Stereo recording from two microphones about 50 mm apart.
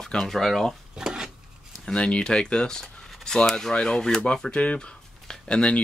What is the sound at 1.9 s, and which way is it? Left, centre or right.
Speech, centre.